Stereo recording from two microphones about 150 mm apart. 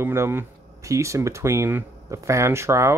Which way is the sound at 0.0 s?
15° right (ahead or behind).